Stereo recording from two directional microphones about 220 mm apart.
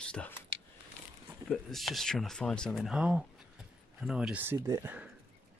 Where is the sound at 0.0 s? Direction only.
5° left (ahead or behind).